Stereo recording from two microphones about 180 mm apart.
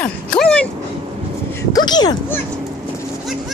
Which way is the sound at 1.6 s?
20° left (ahead or behind).